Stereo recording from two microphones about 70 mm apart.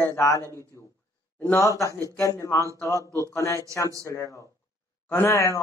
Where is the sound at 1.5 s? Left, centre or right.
Left.